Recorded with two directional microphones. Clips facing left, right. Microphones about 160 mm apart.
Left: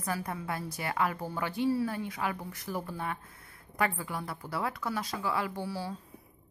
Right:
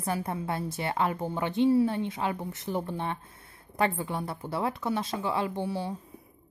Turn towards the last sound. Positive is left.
turn(degrees=-20)  # may be behind; listen again after turning